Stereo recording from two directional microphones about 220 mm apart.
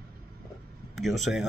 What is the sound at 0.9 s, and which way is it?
Speech, centre (ahead or behind).